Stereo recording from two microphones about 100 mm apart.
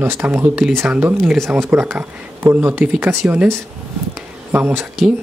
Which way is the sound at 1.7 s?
15° right (ahead or behind).